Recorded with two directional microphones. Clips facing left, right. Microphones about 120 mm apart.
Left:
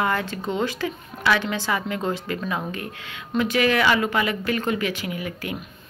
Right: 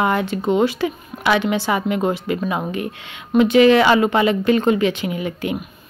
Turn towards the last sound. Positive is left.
turn(degrees=-25)  # may be behind; listen again after turning